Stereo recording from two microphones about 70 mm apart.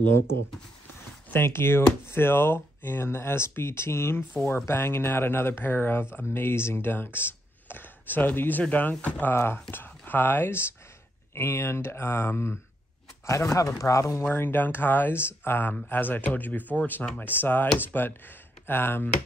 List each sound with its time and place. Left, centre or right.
1.3 s speech: left
9.3 s speech: left
13.3 s speech: left
14.2 s speech: left